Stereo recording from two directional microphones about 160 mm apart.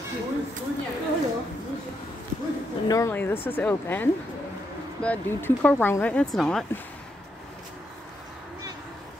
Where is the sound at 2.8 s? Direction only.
20° left (ahead or behind); by 6.6 s centre (ahead or behind).